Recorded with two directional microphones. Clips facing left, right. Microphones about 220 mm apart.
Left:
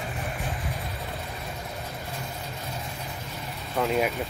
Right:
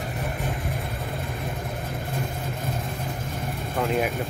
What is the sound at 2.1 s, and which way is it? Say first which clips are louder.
Vehicle: right 6 dB; 50° right (ahead or behind).